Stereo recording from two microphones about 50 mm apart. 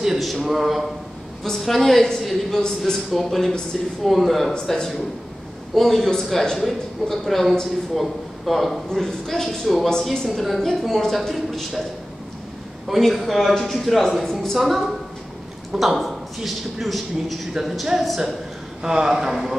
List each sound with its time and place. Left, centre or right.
0.0 s a woman's voice: centre
12.8 s a woman's voice: centre